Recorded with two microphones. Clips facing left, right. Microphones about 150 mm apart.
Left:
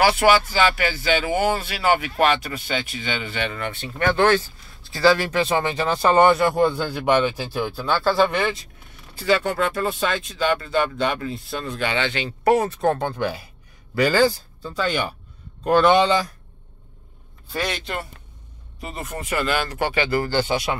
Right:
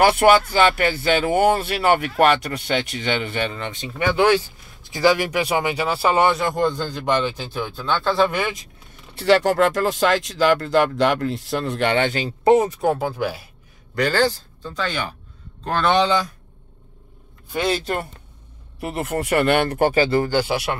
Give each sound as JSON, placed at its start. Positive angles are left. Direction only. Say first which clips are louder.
{"t": 0.0, "sound": "speech", "louder": "right 2 dB", "side_deg": -55}
{"t": 3.5, "sound": "speech", "louder": "even", "side_deg": -20}
{"t": 9.1, "sound": "speech", "louder": "right 4 dB", "side_deg": -70}
{"t": 12.4, "sound": "speech", "louder": "right 2 dB", "side_deg": -15}
{"t": 13.9, "sound": "speech", "louder": "left 2 dB", "side_deg": 10}
{"t": 17.5, "sound": "speech", "louder": "right 5 dB", "side_deg": -25}
{"t": 17.7, "sound": "speech", "louder": "right 5 dB", "side_deg": -45}
{"t": 18.8, "sound": "speech", "louder": "right 7 dB", "side_deg": -70}
{"t": 20.2, "sound": "speech", "louder": "right 1 dB", "side_deg": -10}